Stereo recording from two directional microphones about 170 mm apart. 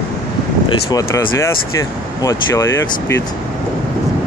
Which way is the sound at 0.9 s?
15° left (ahead or behind).